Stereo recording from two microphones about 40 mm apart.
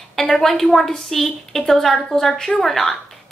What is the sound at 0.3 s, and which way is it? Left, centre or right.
A woman's voice, centre.